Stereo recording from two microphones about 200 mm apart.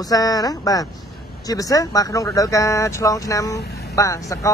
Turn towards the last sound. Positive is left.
turn(degrees=15)  # may be behind; listen again after turning